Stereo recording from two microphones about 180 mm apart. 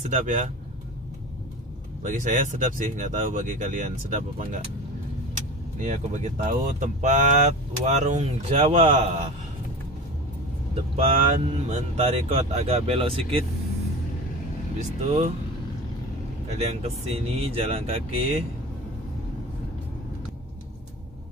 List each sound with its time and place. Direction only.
0.1 s speech: 45° right (ahead or behind)
2.0 s speech: 45° right (ahead or behind)
5.8 s speech: 40° right (ahead or behind)
11.0 s speech: 35° right (ahead or behind)
14.8 s speech: 40° right (ahead or behind)
16.5 s speech: 35° right (ahead or behind)